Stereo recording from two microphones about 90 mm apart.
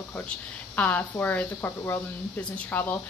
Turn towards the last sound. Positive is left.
turn(degrees=20)  # may be behind; listen again after turning